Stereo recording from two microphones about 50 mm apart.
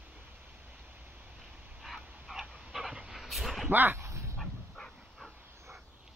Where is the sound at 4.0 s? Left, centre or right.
Right.